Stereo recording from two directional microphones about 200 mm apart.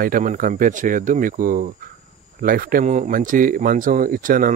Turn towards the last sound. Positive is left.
turn(degrees=-45)  # may be behind; listen again after turning